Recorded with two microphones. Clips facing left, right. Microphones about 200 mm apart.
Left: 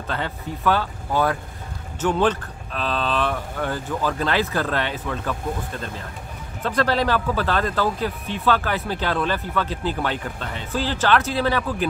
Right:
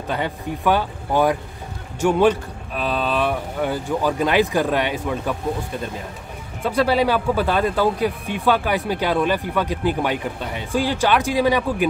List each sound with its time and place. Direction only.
0.1 s speech: 15° right (ahead or behind)